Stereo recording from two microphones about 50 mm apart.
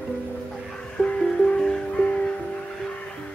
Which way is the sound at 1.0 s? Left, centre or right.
Left.